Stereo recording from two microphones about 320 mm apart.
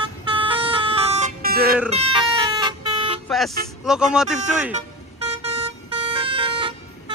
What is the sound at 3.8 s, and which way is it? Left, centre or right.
Speech, centre.